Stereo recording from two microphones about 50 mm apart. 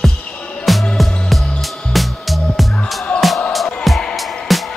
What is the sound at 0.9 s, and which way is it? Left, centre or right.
Music, centre.